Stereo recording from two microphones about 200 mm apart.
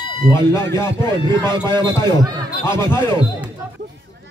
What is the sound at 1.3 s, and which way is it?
Speech, 20° right (ahead or behind).